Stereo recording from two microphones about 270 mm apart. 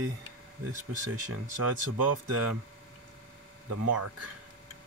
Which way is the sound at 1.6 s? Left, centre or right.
Right.